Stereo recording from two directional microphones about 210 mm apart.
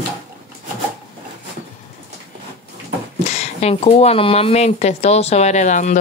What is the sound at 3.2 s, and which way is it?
Speech, 30° left (ahead or behind).